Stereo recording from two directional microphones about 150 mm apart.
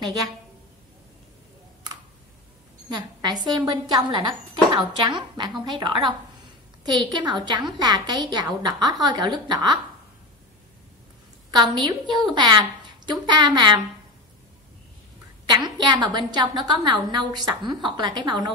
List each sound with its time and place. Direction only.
2.9 s speech: 30° right (ahead or behind)
11.5 s speech: 30° right (ahead or behind)
15.5 s speech: 30° right (ahead or behind)